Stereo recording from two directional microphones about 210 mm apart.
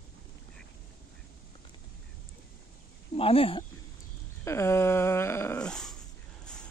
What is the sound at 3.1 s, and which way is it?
Speech, 25° left (ahead or behind).